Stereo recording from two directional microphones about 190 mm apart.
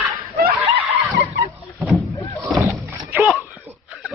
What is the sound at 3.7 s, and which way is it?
Wheeze, 10° right (ahead or behind).